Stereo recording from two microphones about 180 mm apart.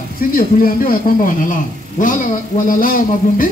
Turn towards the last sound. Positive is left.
turn(degrees=50)  # may be behind; listen again after turning